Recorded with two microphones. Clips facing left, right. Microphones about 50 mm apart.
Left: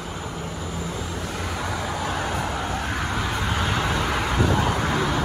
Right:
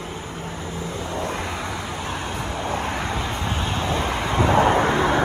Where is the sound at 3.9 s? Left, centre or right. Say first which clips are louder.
Right 1 dB; right.